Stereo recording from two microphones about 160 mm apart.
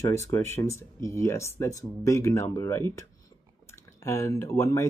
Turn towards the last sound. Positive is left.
turn(degrees=20)  # may be behind; listen again after turning